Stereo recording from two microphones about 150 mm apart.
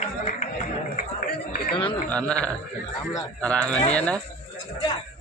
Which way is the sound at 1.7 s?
35° left (ahead or behind).